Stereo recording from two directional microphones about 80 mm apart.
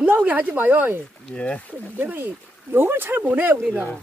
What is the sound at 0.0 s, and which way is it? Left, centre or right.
Speech, right.